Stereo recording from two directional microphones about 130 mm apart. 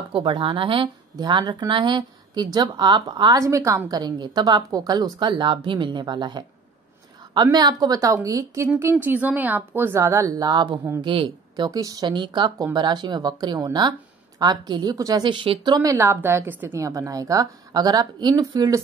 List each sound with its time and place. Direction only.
0.1 s speech: 40° right (ahead or behind)
7.5 s a woman's voice: 30° right (ahead or behind)